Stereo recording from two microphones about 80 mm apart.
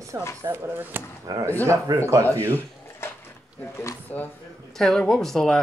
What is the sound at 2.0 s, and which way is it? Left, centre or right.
Speech, right.